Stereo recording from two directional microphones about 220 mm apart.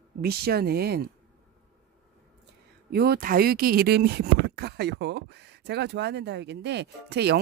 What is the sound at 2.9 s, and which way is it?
Speech, 45° right (ahead or behind).